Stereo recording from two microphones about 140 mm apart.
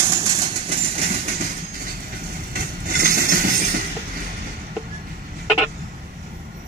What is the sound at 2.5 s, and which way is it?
Vehicle, 90° right.